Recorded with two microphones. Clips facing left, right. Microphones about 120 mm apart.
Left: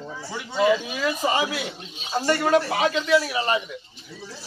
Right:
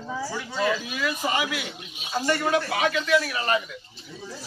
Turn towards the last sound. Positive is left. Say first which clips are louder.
# left 2 dB
turn(degrees=20)  # may be behind; listen again after turning